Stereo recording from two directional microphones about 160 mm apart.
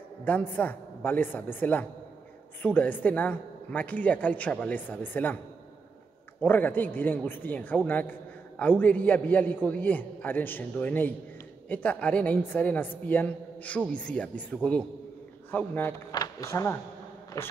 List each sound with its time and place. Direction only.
0.2 s a man's voice: 10° left (ahead or behind)
6.4 s a man's voice: 10° left (ahead or behind)
17.3 s a sound: 20° left (ahead or behind)